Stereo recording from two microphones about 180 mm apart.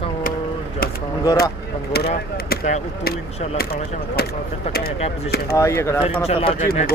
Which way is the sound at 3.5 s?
60° left (ahead or behind).